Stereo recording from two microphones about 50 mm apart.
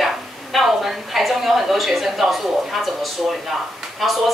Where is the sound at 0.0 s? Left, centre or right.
Centre.